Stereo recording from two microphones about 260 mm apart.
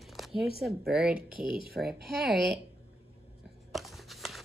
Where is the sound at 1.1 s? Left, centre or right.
Right.